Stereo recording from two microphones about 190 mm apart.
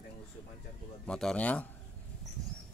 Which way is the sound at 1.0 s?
5° left (ahead or behind).